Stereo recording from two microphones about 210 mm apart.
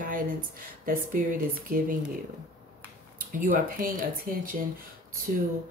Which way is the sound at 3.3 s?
40° right (ahead or behind).